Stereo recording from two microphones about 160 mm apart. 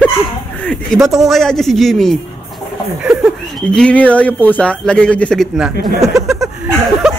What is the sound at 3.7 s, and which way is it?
Speech, 5° left (ahead or behind).